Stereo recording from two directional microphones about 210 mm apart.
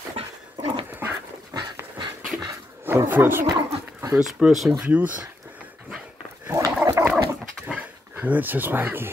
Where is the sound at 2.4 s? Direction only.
10° right (ahead or behind).